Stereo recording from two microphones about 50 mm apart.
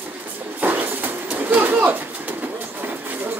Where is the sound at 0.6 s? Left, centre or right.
Right.